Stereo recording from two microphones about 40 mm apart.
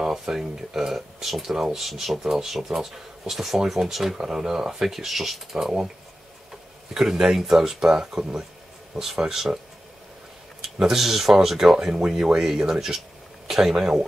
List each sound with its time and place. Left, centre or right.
0.0 s speech: centre
7.0 s speech: centre
10.6 s speech: centre